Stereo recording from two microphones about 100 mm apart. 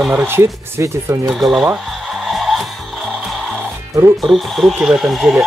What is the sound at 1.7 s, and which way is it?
Music, centre (ahead or behind).